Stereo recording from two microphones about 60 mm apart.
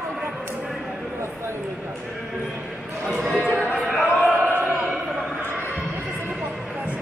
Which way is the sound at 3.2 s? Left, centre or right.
Right.